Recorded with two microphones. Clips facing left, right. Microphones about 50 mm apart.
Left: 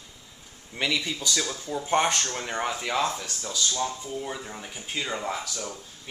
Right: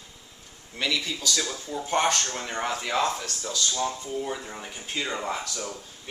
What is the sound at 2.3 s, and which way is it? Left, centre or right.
Speech, centre.